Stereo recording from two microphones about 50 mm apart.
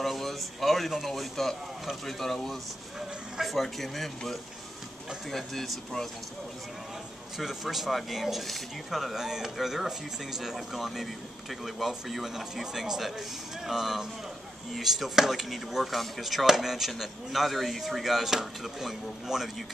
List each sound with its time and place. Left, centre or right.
0.0 s a sound: centre
1.0 s speech: centre
7.3 s speech: centre